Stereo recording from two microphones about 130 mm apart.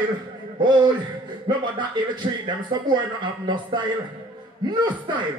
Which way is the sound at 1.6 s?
35° right (ahead or behind).